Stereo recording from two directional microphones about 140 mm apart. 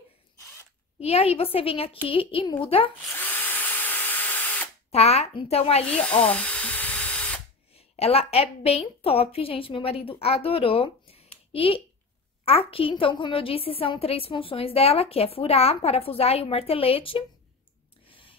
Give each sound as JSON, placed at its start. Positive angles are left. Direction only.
{"t": 0.9, "sound": "a woman's voice", "side_deg": 45}
{"t": 3.2, "sound": "drill", "side_deg": 15}
{"t": 4.9, "sound": "a woman's voice", "side_deg": 45}
{"t": 6.3, "sound": "a sound", "side_deg": 10}
{"t": 7.7, "sound": "a woman's voice", "side_deg": 45}
{"t": 18.0, "sound": "a sound", "side_deg": 40}